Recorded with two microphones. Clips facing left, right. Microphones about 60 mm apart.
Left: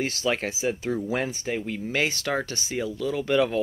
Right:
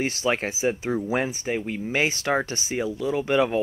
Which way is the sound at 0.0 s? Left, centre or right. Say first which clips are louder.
Right 2 dB; right.